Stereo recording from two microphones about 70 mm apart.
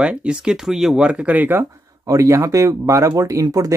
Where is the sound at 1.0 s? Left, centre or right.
Centre.